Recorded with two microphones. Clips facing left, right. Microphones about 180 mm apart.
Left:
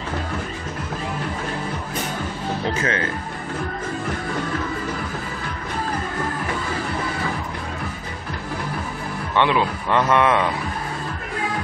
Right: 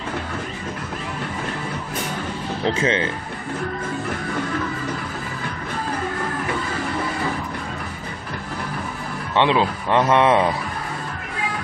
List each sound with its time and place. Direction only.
2.6 s a man's voice: 25° right (ahead or behind)
9.3 s a man's voice: 25° right (ahead or behind)